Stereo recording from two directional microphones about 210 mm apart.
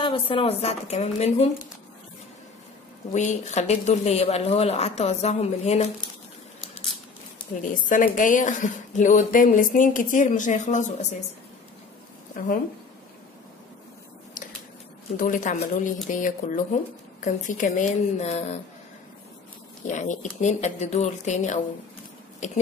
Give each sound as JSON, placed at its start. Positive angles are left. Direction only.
{"t": 0.0, "sound": "a woman's voice", "side_deg": 25}
{"t": 3.1, "sound": "a woman's voice", "side_deg": 35}
{"t": 7.8, "sound": "a woman's voice", "side_deg": 40}
{"t": 12.4, "sound": "a woman's voice", "side_deg": 40}
{"t": 15.1, "sound": "a woman's voice", "side_deg": 40}
{"t": 19.9, "sound": "a woman's voice", "side_deg": 35}